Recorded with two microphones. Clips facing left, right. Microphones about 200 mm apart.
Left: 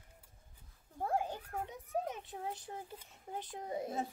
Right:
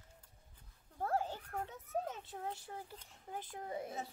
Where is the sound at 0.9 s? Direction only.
15° left (ahead or behind).